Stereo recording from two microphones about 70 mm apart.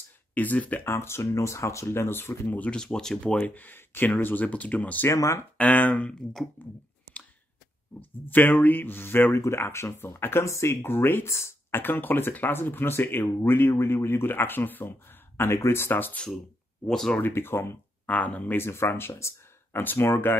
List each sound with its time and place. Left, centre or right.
0.3 s speech: left
0.8 s a man's voice: left
2.7 s speech: centre
5.1 s speech: left
5.6 s speech: left
8.0 s a man's voice: left
11.8 s a man's voice: left
16.8 s speech: centre
17.2 s a man's voice: left
18.0 s speech: left
18.6 s a man's voice: left